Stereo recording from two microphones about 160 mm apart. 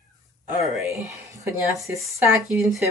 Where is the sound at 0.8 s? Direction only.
15° right (ahead or behind).